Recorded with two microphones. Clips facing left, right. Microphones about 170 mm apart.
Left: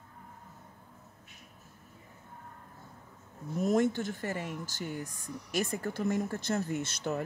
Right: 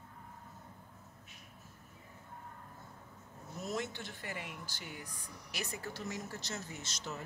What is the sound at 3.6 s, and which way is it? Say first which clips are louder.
Speech: left 12 dB; 50° left (ahead or behind).